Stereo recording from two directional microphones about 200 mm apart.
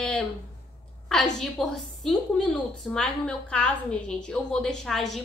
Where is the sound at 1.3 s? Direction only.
Centre (ahead or behind).